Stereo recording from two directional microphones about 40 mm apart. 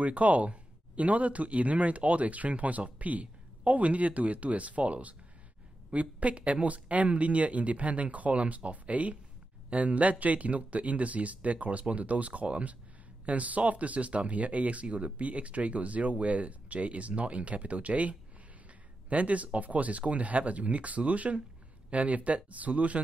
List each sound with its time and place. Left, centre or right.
0.0 s speech: right